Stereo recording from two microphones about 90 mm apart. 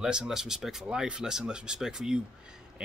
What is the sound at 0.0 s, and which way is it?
A man's voice, 5° right (ahead or behind).